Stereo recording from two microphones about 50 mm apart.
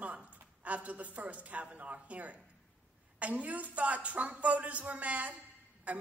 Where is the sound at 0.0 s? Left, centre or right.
Right.